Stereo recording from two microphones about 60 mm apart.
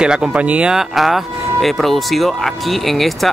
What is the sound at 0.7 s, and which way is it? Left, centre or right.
Speech, centre.